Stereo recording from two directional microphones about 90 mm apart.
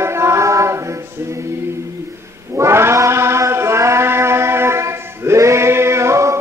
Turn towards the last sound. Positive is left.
turn(degrees=-30)  # may be behind; listen again after turning